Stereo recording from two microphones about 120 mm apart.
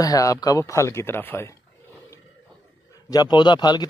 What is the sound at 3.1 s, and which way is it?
Speech, 35° left (ahead or behind).